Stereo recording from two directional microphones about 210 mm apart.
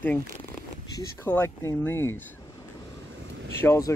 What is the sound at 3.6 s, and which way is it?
Speech, 15° left (ahead or behind).